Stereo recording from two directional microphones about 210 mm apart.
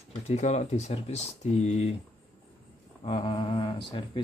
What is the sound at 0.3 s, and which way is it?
Speech, 35° left (ahead or behind).